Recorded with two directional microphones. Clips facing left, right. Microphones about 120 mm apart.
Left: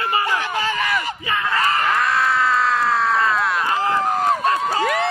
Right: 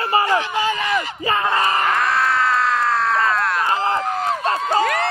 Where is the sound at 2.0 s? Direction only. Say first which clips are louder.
Even; centre (ahead or behind).